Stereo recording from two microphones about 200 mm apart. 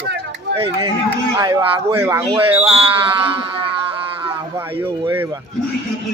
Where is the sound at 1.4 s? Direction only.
10° right (ahead or behind).